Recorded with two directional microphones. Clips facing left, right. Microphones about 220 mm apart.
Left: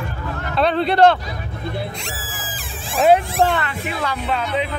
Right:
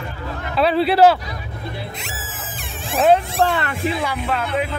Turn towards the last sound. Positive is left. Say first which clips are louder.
# even
turn(degrees=-5)  # may be behind; listen again after turning